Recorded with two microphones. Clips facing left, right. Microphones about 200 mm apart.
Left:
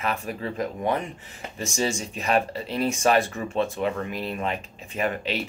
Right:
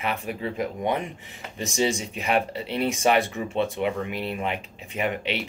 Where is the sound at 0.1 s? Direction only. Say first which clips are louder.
Even; 10° right (ahead or behind).